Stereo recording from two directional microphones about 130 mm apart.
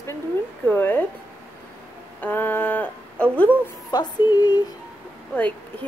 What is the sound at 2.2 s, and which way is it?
Speech, 15° left (ahead or behind).